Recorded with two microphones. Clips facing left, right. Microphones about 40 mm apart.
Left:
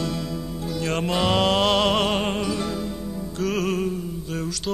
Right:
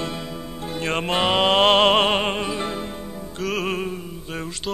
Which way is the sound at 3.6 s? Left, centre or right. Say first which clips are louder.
Left 1 dB; right.